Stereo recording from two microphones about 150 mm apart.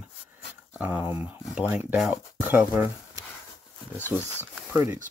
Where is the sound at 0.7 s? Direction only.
10° right (ahead or behind).